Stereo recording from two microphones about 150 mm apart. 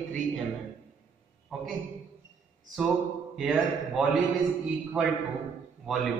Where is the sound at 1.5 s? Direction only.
Centre (ahead or behind).